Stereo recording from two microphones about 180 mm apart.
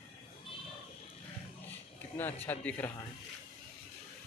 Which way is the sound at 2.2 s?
10° left (ahead or behind).